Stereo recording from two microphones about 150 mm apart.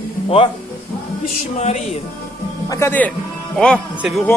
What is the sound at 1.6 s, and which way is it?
Music, 45° left (ahead or behind).